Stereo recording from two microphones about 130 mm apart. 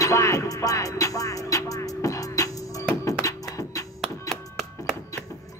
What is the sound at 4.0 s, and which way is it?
Music, centre (ahead or behind).